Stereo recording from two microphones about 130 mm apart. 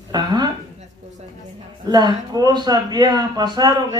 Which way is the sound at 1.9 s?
30° right (ahead or behind).